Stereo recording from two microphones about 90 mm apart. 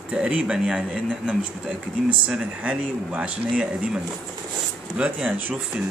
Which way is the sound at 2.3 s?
15° right (ahead or behind).